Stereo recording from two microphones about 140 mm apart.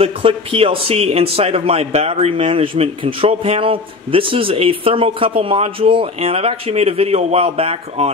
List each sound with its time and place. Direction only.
0.0 s a man's voice: 40° right (ahead or behind)